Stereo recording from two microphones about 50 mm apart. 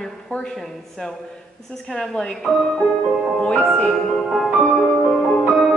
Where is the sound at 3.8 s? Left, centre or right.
Centre.